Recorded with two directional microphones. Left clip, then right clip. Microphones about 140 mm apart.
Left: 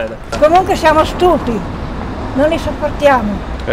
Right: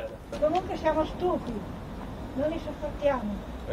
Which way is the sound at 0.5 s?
30° left (ahead or behind).